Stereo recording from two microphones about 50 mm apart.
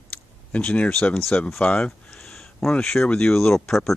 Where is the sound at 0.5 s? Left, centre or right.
Left.